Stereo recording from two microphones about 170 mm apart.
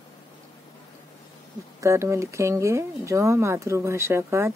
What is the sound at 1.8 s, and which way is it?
Speech, 15° right (ahead or behind).